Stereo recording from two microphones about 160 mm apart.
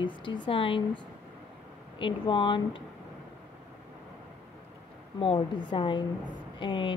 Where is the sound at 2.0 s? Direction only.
30° left (ahead or behind).